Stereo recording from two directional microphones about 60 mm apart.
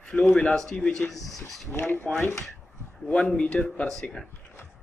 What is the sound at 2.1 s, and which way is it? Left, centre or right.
Speech, centre.